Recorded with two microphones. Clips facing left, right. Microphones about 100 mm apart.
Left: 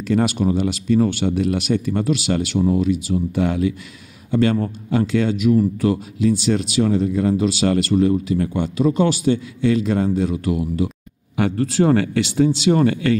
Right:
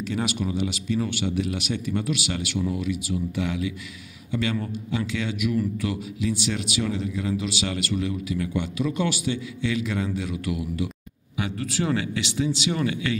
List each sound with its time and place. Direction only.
0.1 s a man's voice: 40° left (ahead or behind)
11.3 s speech: 45° left (ahead or behind)